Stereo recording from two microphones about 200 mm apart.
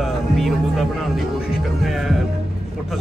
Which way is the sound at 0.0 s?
Centre (ahead or behind).